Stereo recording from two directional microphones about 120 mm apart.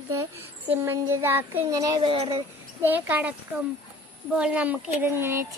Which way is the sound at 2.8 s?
15° right (ahead or behind).